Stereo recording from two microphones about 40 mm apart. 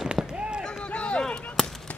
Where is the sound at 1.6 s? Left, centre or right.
Centre.